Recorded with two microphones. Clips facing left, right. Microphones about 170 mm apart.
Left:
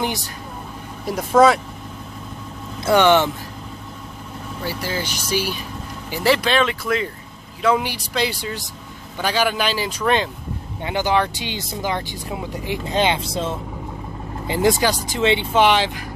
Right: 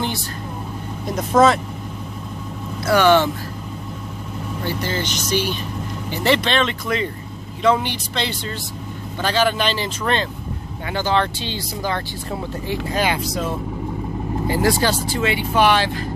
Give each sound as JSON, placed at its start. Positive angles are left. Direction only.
{"t": 0.0, "sound": "a sound", "side_deg": 15}
{"t": 1.4, "sound": "speech", "side_deg": 10}
{"t": 2.8, "sound": "speech", "side_deg": 20}
{"t": 4.6, "sound": "speech", "side_deg": 5}